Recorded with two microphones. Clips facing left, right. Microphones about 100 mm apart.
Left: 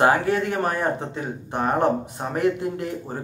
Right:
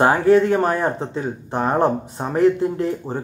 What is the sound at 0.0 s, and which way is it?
Speech, 30° right (ahead or behind).